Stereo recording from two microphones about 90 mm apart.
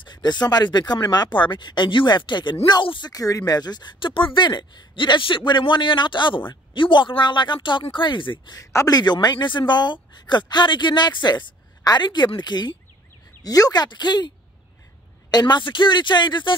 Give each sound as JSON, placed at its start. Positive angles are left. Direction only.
{"t": 0.0, "sound": "speech", "side_deg": 55}
{"t": 2.8, "sound": "speech", "side_deg": 70}
{"t": 3.1, "sound": "speech", "side_deg": 40}
{"t": 8.5, "sound": "speech", "side_deg": 40}
{"t": 15.3, "sound": "speech", "side_deg": 55}